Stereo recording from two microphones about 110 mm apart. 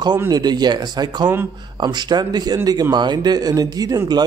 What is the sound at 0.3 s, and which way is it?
A man's voice, 40° right (ahead or behind).